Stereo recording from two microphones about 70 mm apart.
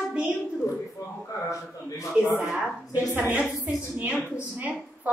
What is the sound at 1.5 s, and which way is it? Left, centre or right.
Speech, left.